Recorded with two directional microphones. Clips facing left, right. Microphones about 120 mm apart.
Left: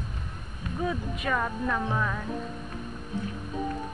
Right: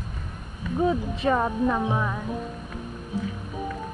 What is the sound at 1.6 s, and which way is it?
Speech, 15° right (ahead or behind).